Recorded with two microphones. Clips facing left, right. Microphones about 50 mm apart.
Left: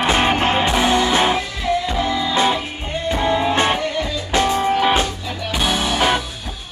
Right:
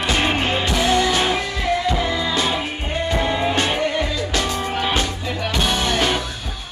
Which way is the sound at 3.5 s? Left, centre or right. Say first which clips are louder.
Left 2 dB; left.